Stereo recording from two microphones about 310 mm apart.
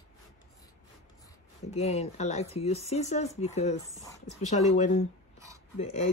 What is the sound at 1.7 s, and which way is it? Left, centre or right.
Speech, left.